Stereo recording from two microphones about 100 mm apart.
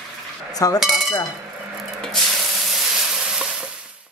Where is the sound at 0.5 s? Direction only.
35° left (ahead or behind).